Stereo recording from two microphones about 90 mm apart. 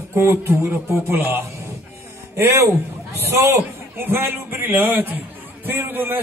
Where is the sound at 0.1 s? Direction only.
30° right (ahead or behind).